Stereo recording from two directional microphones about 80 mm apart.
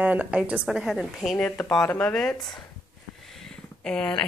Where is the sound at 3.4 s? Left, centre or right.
Centre.